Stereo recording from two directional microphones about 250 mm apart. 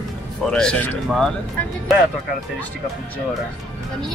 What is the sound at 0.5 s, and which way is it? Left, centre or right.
Speech, centre.